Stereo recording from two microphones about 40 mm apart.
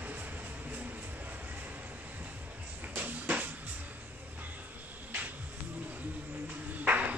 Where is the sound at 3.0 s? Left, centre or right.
Right.